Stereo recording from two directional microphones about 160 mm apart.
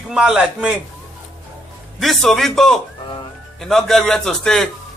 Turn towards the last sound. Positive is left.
turn(degrees=5)  # may be behind; listen again after turning